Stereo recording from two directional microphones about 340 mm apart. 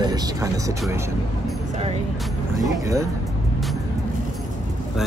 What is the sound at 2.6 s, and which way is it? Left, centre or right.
Speech, centre.